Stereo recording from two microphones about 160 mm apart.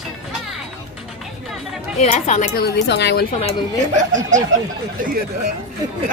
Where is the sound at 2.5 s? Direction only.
85° left.